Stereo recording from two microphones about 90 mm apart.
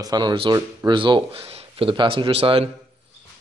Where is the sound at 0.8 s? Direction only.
60° right (ahead or behind); by 2.7 s 90° right.